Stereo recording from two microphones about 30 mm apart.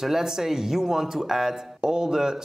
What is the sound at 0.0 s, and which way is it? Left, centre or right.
Speech, centre.